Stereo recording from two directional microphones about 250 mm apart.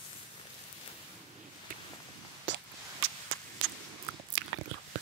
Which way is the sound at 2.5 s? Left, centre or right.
Right.